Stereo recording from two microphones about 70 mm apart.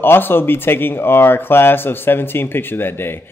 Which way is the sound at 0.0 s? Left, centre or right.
Left.